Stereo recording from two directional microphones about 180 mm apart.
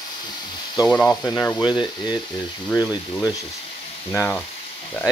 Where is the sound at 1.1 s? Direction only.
20° left (ahead or behind).